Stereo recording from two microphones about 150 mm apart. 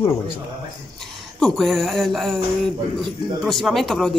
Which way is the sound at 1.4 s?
Centre (ahead or behind).